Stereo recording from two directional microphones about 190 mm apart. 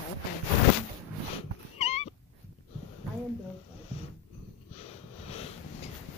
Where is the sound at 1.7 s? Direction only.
35° left (ahead or behind).